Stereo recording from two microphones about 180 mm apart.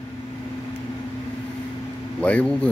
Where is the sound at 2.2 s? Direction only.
5° left (ahead or behind).